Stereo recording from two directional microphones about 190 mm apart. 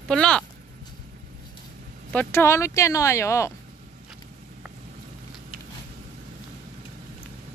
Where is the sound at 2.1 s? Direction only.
15° left (ahead or behind).